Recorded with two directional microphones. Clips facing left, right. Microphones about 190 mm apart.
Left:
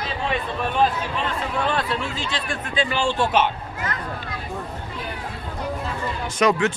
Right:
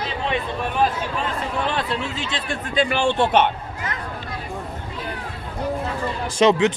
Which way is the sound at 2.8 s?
60° right (ahead or behind).